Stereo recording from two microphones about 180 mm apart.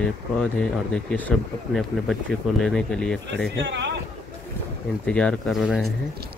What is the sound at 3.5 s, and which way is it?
Speech, 75° right (ahead or behind).